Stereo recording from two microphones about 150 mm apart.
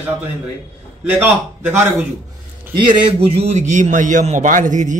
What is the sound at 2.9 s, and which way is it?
A man's voice, 45° right (ahead or behind).